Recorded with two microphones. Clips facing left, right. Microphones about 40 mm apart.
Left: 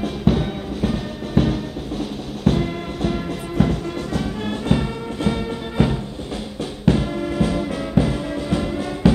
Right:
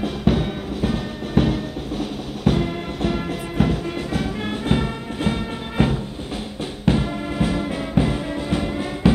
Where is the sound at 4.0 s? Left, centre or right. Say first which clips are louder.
Even; right.